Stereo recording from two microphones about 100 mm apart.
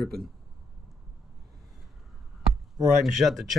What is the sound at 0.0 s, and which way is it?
Speech, centre (ahead or behind).